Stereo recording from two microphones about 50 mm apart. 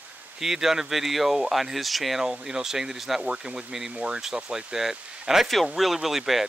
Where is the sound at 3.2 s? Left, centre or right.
Right.